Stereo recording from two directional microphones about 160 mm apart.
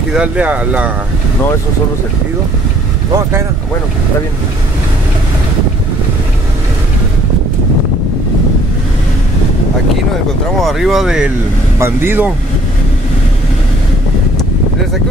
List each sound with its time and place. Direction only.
0.1 s speech: 5° right (ahead or behind)
3.1 s speech: 20° right (ahead or behind)
10.6 s speech: centre (ahead or behind)
11.8 s speech: 15° right (ahead or behind)